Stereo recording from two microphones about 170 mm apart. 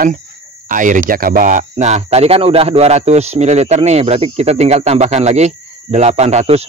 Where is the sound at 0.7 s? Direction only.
50° right (ahead or behind).